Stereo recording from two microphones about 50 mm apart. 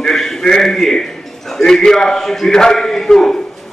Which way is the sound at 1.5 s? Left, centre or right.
Centre.